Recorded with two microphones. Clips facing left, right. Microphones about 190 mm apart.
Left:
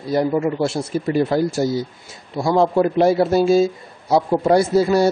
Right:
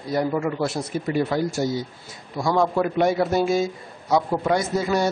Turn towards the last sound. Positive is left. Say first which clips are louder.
# left 7 dB
turn(degrees=30)  # may be behind; listen again after turning